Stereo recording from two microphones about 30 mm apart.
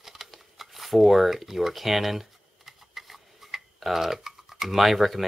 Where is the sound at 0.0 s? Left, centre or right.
Centre.